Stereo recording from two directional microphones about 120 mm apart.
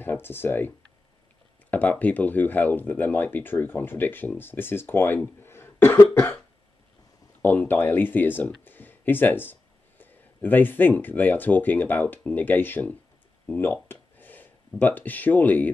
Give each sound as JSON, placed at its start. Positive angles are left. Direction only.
{"t": 0.0, "sound": "speech", "side_deg": 20}
{"t": 7.4, "sound": "speech", "side_deg": 15}